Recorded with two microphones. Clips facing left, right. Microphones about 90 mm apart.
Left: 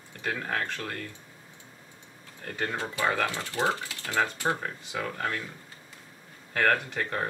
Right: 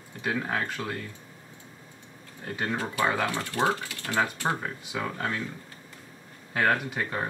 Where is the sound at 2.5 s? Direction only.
15° right (ahead or behind).